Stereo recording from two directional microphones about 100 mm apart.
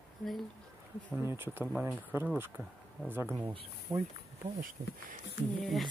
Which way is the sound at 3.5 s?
60° right (ahead or behind).